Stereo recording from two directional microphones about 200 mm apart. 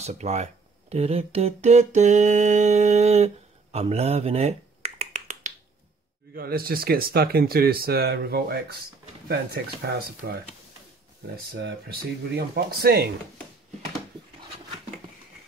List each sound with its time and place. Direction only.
0.0 s speech: 35° right (ahead or behind)
3.7 s finger snapping: 30° right (ahead or behind)
6.3 s speech: 50° right (ahead or behind)
11.3 s speech: 55° right (ahead or behind)